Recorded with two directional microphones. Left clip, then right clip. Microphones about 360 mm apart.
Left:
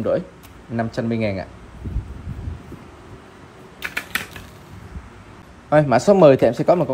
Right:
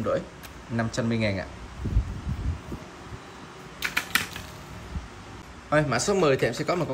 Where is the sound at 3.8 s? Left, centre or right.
Centre.